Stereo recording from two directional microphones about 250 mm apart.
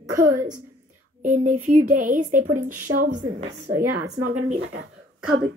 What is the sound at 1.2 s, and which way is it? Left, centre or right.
Speech, right.